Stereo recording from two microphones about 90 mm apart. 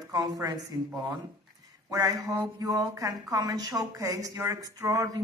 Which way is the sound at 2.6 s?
40° right (ahead or behind).